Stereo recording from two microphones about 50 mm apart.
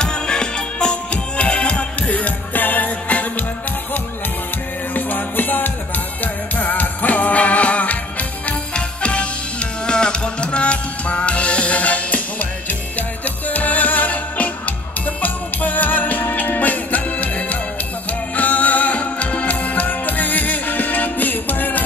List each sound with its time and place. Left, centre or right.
0.0 s music: centre; by 3.4 s left
4.9 s music: left